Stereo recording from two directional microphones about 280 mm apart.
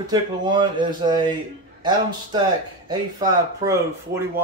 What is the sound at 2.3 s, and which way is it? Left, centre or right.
Speech, centre.